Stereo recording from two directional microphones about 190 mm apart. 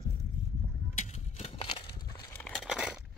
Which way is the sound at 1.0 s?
35° left (ahead or behind).